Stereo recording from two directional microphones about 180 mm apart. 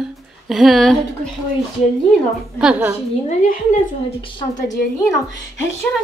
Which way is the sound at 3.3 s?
45° left (ahead or behind).